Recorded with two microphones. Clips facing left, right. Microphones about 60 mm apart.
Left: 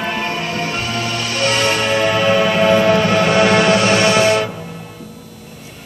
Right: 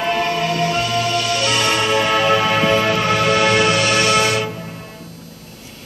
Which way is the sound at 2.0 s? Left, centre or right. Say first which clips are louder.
Left 4 dB; left.